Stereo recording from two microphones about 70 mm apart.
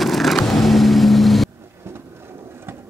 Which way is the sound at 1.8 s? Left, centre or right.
Right.